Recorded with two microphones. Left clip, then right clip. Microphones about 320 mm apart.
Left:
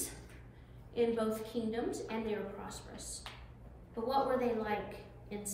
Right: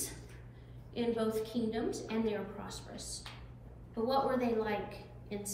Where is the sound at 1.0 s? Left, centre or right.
Centre.